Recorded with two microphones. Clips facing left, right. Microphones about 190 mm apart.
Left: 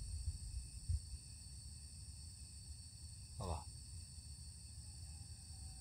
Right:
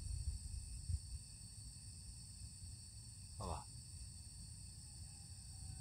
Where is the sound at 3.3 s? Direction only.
5° left (ahead or behind).